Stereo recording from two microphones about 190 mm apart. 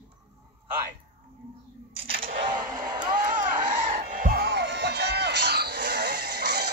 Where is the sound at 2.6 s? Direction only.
20° right (ahead or behind).